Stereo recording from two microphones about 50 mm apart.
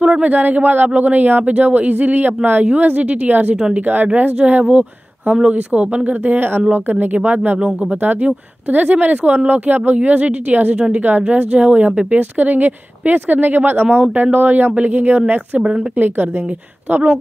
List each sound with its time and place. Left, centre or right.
0.0 s speech: right
3.5 s speech: centre
3.8 s speech: right
15.6 s speech: centre
16.0 s speech: right